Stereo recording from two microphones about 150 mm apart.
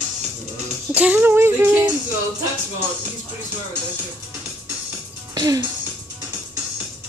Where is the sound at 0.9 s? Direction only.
10° right (ahead or behind).